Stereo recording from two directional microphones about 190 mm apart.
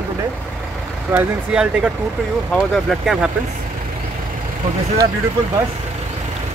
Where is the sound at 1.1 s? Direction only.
5° right (ahead or behind).